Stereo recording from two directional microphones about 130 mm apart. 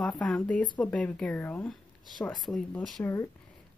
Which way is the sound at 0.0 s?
10° left (ahead or behind).